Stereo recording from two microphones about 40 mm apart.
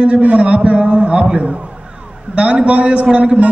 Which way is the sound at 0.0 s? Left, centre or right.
Right.